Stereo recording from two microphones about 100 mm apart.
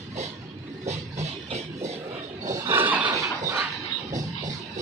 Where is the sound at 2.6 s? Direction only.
20° right (ahead or behind).